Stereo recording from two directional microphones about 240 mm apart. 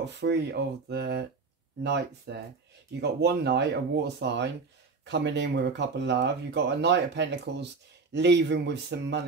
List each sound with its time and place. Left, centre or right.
0.0 s speech: right